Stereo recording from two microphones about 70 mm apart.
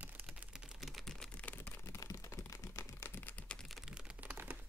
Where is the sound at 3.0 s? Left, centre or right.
Left.